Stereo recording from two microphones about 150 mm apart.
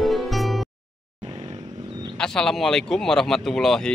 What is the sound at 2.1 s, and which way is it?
Speech, 5° left (ahead or behind).